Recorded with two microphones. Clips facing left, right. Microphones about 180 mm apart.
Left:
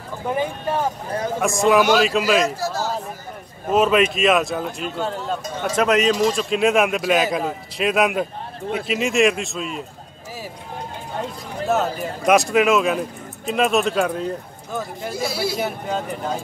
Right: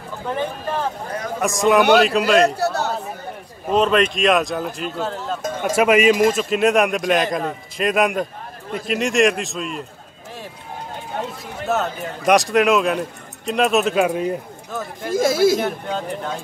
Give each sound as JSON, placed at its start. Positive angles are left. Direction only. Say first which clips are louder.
{"t": 0.3, "sound": "speech", "louder": "left 1 dB", "side_deg": 10}
{"t": 1.4, "sound": "a man's voice", "louder": "right 1 dB", "side_deg": 0}
{"t": 2.4, "sound": "a man's voice", "louder": "right 4 dB", "side_deg": -65}
{"t": 3.6, "sound": "a man's voice", "louder": "even", "side_deg": 5}
{"t": 11.6, "sound": "a man's voice", "louder": "left 1 dB", "side_deg": 0}
{"t": 15.1, "sound": "speech", "louder": "right 9 dB", "side_deg": -45}
{"t": 15.5, "sound": "a man's voice", "louder": "right 2 dB", "side_deg": 5}